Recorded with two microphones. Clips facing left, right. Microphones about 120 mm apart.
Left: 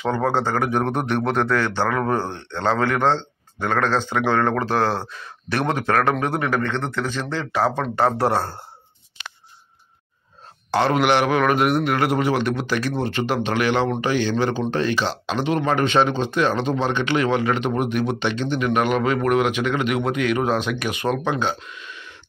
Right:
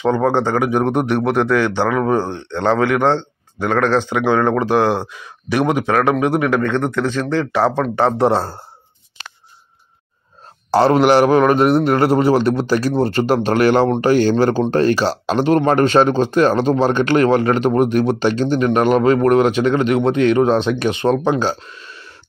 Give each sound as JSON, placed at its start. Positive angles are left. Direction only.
{"t": 0.1, "sound": "speech", "side_deg": -15}
{"t": 6.9, "sound": "speech", "side_deg": 5}
{"t": 7.2, "sound": "speech", "side_deg": -10}
{"t": 9.2, "sound": "a sound", "side_deg": -40}
{"t": 10.7, "sound": "speech", "side_deg": -35}